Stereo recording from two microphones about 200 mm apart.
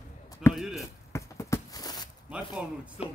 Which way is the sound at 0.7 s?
15° left (ahead or behind).